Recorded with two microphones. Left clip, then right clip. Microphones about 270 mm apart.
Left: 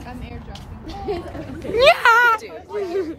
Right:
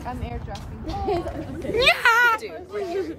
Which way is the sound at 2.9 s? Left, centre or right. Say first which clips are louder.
Left 3 dB; centre.